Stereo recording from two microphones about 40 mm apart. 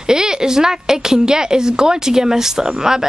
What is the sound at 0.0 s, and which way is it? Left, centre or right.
A woman's voice, centre.